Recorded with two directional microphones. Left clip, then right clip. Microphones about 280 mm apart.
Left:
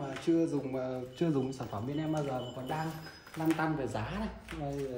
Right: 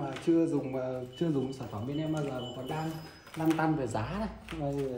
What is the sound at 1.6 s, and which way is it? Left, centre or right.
Speech, centre.